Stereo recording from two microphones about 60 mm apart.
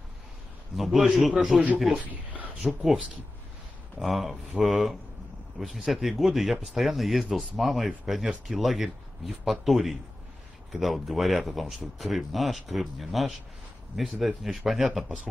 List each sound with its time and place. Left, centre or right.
0.7 s speech: centre
2.0 s speech: right
2.6 s speech: centre
4.0 s speech: centre